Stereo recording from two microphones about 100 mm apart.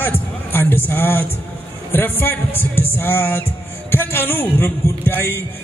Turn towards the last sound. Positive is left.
turn(degrees=20)  # may be behind; listen again after turning